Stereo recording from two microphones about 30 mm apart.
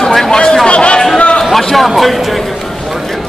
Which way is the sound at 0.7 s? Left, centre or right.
Left.